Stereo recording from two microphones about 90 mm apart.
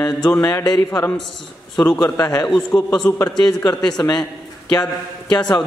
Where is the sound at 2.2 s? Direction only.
45° left (ahead or behind).